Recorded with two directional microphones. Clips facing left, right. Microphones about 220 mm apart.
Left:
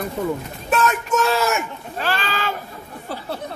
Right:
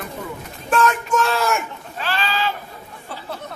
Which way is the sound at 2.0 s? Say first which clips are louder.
Right 1 dB; 50° left (ahead or behind).